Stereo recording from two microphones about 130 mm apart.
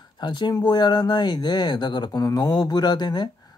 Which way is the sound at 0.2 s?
35° left (ahead or behind).